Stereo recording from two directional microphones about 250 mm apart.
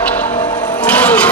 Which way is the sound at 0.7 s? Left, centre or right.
Centre.